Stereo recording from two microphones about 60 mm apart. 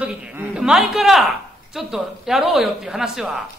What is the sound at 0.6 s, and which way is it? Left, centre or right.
A woman's voice, centre.